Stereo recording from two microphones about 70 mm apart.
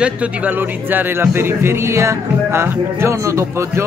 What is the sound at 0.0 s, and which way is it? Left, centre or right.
Speech, right.